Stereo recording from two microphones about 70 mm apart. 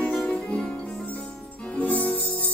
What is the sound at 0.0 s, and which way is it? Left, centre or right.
Music, centre.